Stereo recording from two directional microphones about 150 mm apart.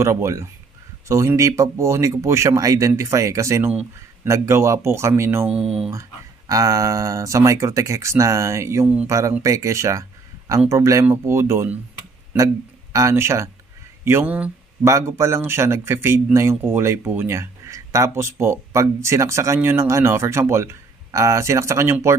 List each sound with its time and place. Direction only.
0.0 s speech: 20° right (ahead or behind)
5.6 s speech: 5° right (ahead or behind)
5.9 s speech: 20° right (ahead or behind)
12.9 s speech: 20° right (ahead or behind)